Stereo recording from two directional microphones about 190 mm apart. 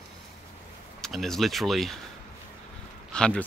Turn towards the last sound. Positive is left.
turn(degrees=5)  # may be behind; listen again after turning